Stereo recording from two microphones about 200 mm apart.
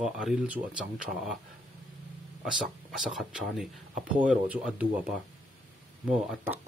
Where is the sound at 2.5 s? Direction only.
Centre (ahead or behind).